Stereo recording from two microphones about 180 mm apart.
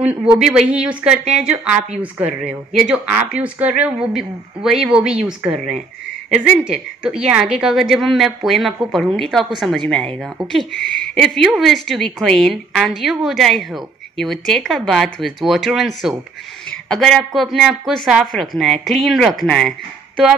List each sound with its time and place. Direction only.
0.0 s a woman's voice: 5° right (ahead or behind)